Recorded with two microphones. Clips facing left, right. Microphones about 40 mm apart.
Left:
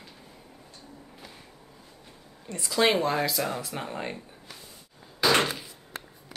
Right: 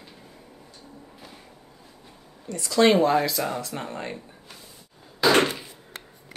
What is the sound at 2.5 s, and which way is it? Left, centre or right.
Speech, centre.